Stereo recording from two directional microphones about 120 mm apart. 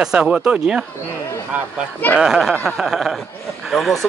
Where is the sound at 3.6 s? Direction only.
Centre (ahead or behind).